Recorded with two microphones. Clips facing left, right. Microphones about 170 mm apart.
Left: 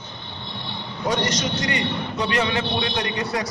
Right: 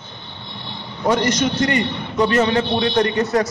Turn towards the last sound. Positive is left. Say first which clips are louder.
# right 8 dB
turn(degrees=-45)  # may be behind; listen again after turning